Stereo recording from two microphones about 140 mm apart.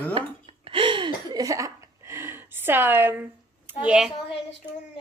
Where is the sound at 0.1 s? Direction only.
40° right (ahead or behind); by 3.7 s 15° right (ahead or behind).